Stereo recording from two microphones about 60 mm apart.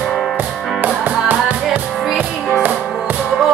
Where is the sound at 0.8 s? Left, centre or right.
Right.